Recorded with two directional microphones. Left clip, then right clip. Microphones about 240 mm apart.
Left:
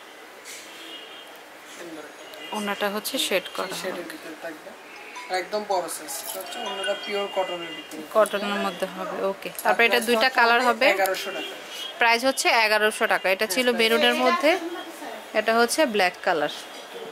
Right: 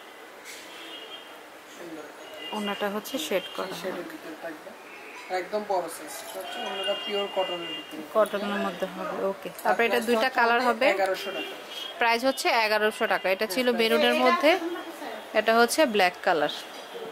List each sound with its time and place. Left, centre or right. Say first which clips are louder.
2.5 s speech: left 3 dB; centre
5.5 s speech: left 1 dB; right
6.6 s speech: left 2 dB; centre
9.4 s speech: left 5 dB; centre